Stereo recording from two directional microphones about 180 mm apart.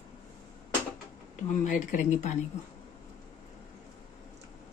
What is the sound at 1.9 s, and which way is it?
Speech, 40° left (ahead or behind).